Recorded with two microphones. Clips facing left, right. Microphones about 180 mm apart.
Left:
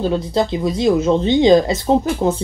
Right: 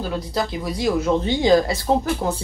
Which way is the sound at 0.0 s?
25° left (ahead or behind).